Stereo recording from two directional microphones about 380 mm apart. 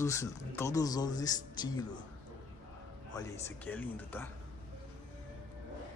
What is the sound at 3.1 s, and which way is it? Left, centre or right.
Speech, centre.